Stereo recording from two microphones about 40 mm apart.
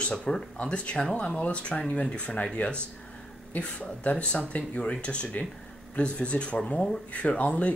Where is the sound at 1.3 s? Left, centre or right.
Left.